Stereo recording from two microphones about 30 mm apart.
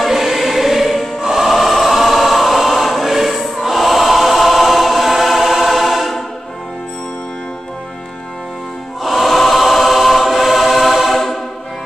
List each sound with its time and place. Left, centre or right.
0.0 s choir: centre
9.0 s music: centre
9.4 s choir: centre